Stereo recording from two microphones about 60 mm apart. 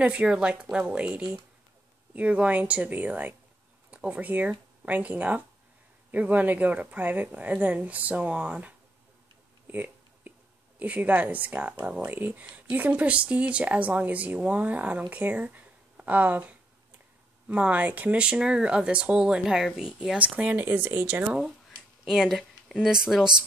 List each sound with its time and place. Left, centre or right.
0.0 s speech: right
9.7 s a sound: right
10.8 s speech: right
18.1 s speech: centre
20.2 s speech: right
21.2 s speech: centre